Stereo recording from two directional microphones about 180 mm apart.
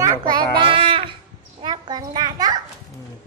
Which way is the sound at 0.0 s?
20° right (ahead or behind).